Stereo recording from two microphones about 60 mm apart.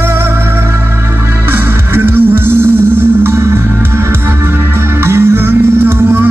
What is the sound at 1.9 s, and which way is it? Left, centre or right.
Music, right.